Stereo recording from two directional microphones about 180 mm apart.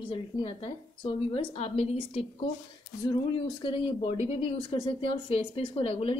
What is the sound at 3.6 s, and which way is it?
A woman's voice, 30° left (ahead or behind).